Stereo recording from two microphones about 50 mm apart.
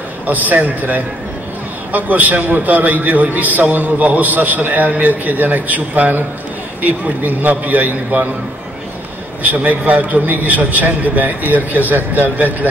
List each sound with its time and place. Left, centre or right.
0.3 s a man's voice: right
9.4 s a man's voice: right